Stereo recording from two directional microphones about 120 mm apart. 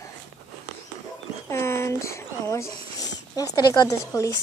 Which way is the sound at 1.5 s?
20° left (ahead or behind).